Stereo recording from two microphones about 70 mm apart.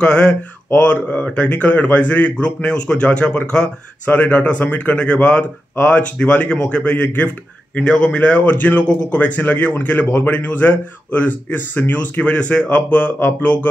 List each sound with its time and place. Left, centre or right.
0.0 s speech: centre